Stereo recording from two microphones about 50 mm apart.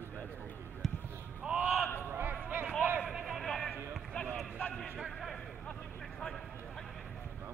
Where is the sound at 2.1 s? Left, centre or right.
Right.